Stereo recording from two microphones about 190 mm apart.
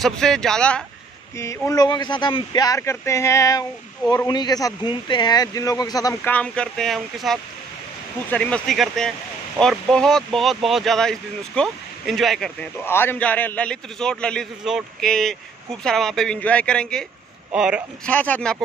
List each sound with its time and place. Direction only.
0.0 s speech: centre (ahead or behind)
1.4 s speech: 15° left (ahead or behind)
6.3 s speech: 5° left (ahead or behind)
18.0 s speech: 10° left (ahead or behind)